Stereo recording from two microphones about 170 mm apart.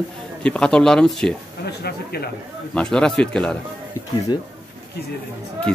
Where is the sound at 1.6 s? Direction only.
70° left (ahead or behind).